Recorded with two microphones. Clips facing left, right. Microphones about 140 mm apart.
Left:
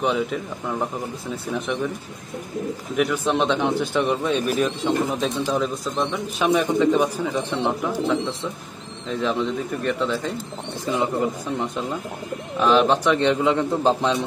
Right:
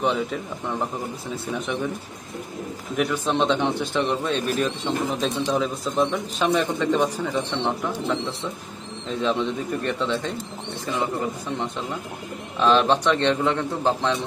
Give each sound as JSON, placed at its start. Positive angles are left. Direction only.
{"t": 0.0, "sound": "speech", "side_deg": 0}
{"t": 3.0, "sound": "speech", "side_deg": 0}
{"t": 9.2, "sound": "speech", "side_deg": 0}
{"t": 10.9, "sound": "speech", "side_deg": 20}